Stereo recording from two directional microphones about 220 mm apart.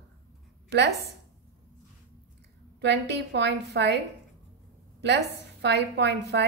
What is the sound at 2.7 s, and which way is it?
A woman's voice, 50° right (ahead or behind).